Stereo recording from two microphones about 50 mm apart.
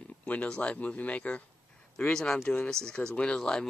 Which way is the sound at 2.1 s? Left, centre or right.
Centre.